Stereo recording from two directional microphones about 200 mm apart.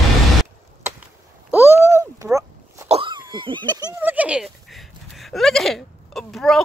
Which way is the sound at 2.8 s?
30° right (ahead or behind).